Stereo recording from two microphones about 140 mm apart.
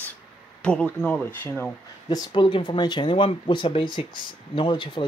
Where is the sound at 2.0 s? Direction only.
30° left (ahead or behind).